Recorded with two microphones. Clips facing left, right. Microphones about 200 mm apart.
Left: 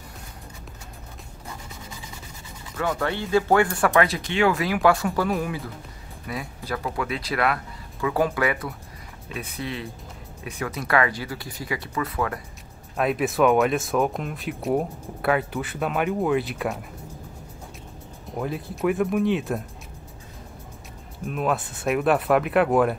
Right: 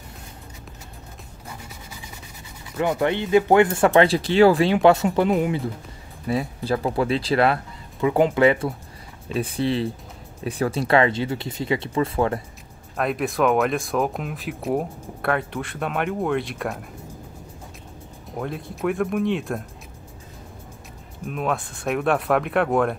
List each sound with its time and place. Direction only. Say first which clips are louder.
2.8 s speech: right 4 dB; 20° right (ahead or behind)
12.9 s speech: left 1 dB; centre (ahead or behind)
18.3 s speech: left 1 dB; centre (ahead or behind)
21.3 s speech: left 1 dB; centre (ahead or behind)